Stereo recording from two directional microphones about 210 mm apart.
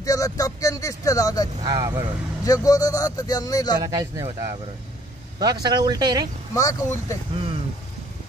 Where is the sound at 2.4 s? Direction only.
15° left (ahead or behind).